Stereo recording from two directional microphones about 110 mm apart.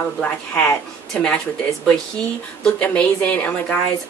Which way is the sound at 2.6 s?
10° left (ahead or behind).